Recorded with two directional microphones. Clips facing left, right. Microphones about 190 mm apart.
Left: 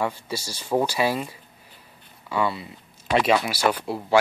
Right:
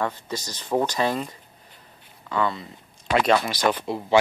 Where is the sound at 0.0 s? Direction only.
10° left (ahead or behind).